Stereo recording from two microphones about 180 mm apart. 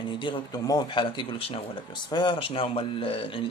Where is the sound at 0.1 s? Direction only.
25° left (ahead or behind).